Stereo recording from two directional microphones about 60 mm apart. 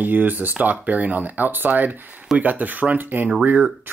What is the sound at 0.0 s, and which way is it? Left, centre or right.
Speech, right.